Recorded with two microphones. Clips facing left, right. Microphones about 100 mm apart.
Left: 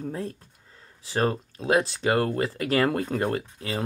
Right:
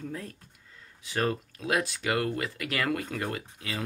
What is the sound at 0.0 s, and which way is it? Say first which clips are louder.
Speech: left 6 dB; 30° left (ahead or behind).